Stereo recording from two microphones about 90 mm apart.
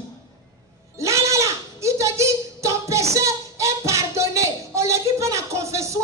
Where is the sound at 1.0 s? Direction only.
35° right (ahead or behind).